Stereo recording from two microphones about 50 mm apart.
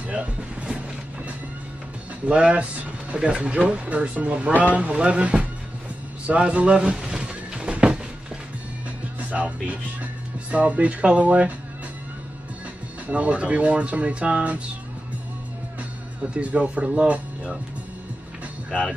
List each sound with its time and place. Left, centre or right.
0.0 s music: right
2.2 s speech: right
6.2 s a sound: right
9.3 s speech: right
13.1 s speech: right
16.3 s speech: right